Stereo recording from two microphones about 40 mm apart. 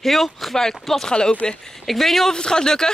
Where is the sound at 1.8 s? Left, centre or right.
Centre.